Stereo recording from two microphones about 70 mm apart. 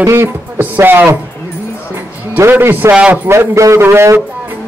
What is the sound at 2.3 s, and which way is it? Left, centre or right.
Speech, right.